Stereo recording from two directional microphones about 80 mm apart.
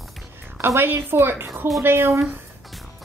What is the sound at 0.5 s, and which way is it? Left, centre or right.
A woman's voice, right.